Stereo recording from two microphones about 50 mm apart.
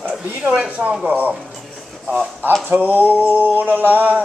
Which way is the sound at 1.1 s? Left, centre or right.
Right.